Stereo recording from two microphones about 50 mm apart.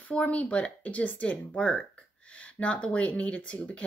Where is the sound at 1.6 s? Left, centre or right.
Centre.